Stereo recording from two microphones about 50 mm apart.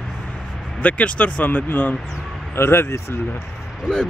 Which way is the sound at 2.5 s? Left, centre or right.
Left.